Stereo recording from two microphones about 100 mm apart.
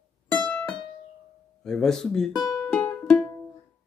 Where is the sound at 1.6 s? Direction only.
5° left (ahead or behind).